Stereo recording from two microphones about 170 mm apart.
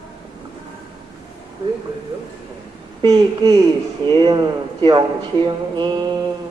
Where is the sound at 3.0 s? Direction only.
25° right (ahead or behind).